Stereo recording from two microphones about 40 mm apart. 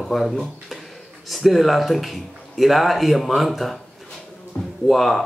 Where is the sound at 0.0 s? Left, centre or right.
Centre.